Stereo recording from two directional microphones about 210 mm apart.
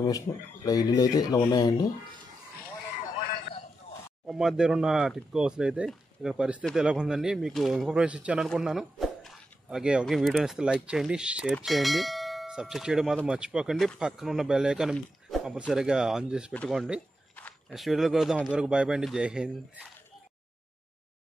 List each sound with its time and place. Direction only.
0.0 s speech: 15° left (ahead or behind)
4.3 s speech: centre (ahead or behind)